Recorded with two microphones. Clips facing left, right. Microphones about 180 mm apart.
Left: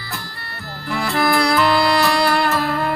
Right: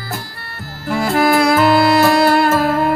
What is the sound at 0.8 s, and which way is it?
Music, 45° right (ahead or behind).